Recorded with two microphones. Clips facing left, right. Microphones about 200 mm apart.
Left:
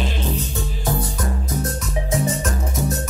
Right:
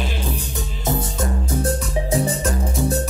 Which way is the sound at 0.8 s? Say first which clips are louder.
Right 2 dB; 25° right (ahead or behind).